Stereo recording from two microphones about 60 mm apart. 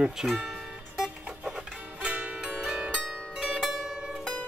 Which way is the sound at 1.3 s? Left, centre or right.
Centre.